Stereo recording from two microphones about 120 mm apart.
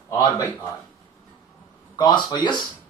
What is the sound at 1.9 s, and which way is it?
Speech, 40° left (ahead or behind).